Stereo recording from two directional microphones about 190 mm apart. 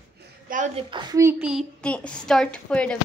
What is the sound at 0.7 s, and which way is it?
Speech, 25° right (ahead or behind).